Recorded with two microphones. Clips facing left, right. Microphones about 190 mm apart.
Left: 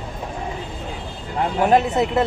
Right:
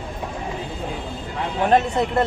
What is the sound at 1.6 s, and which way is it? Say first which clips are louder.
Speech: even; 5° left (ahead or behind).